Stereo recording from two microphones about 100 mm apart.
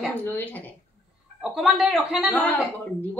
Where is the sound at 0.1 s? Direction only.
20° left (ahead or behind).